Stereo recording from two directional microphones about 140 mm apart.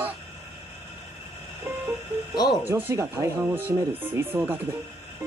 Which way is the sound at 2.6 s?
15° right (ahead or behind).